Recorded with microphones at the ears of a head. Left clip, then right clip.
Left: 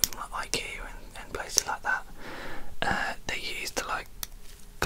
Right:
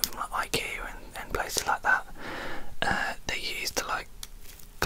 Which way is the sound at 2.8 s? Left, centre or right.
Centre.